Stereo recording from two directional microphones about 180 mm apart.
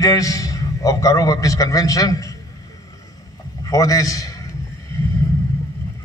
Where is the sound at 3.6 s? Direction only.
20° left (ahead or behind).